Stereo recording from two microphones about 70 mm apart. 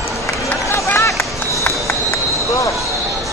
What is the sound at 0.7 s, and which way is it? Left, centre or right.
Run, left.